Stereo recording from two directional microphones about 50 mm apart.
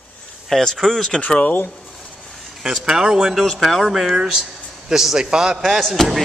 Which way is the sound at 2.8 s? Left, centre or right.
Centre.